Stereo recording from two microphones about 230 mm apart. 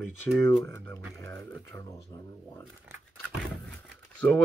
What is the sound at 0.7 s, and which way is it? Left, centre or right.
Speech, centre.